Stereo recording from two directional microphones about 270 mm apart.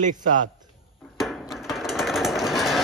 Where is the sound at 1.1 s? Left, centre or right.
Centre.